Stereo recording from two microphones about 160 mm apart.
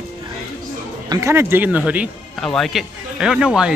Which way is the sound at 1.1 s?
15° right (ahead or behind).